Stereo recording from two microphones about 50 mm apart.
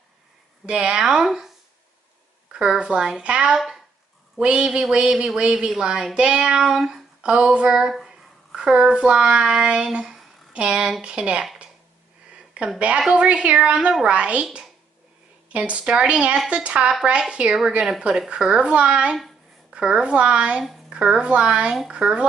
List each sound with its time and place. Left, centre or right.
0.7 s a woman's voice: centre
2.5 s a woman's voice: centre
7.2 s speech: right
12.7 s speech: right
14.4 s a woman's voice: centre
15.5 s a woman's voice: right